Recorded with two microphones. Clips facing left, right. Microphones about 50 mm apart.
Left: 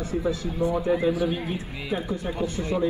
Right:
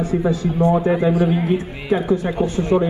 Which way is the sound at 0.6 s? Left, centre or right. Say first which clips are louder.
Right 7 dB; right.